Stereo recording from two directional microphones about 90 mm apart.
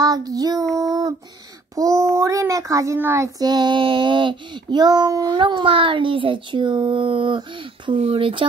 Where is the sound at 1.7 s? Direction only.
40° right (ahead or behind).